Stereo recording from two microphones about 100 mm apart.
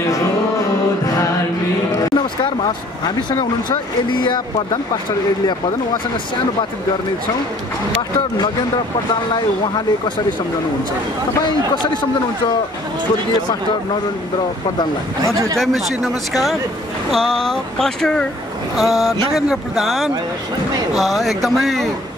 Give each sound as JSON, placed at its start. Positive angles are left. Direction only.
{"t": 4.2, "sound": "speech", "side_deg": 50}
{"t": 9.3, "sound": "speech", "side_deg": 50}
{"t": 11.7, "sound": "speech", "side_deg": 50}
{"t": 15.2, "sound": "speech", "side_deg": -35}
{"t": 15.5, "sound": "speech", "side_deg": 0}